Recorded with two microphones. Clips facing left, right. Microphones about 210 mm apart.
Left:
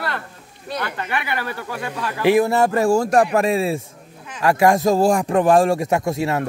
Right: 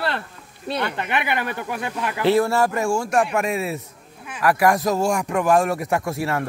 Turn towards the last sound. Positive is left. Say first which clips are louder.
# left 3 dB
turn(degrees=20)  # may be behind; listen again after turning